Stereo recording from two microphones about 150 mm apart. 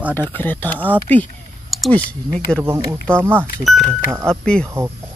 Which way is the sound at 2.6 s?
20° right (ahead or behind).